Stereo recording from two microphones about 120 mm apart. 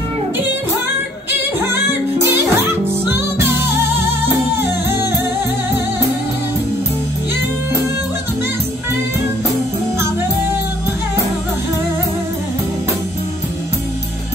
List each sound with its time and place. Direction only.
2.3 s music: 20° right (ahead or behind)